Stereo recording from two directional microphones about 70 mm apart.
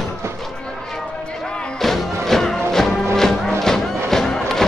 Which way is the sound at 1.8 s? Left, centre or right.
Centre.